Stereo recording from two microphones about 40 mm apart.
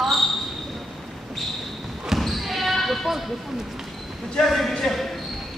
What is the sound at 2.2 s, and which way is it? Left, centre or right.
Basketball bounce, centre.